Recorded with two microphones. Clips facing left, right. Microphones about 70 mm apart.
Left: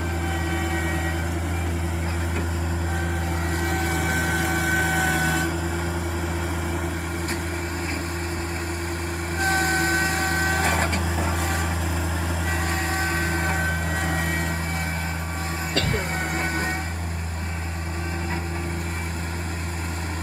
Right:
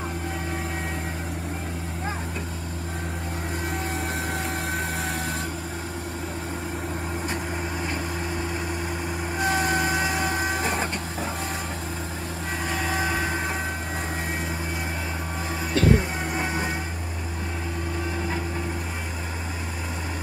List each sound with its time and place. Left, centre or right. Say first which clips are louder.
3.6 s vehicle: left 4 dB; left
4.1 s vehicle: left 5 dB; left
9.4 s vehicle: left 1 dB; left
12.7 s vehicle: right 3 dB; centre
15.7 s music: right 6 dB; left